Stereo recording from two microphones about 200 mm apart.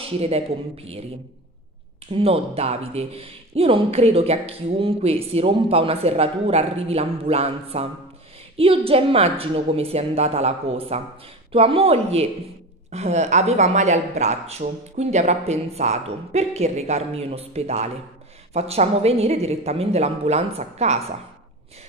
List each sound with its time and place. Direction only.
0.0 s a woman's voice: 30° right (ahead or behind)
2.1 s a woman's voice: 30° right (ahead or behind)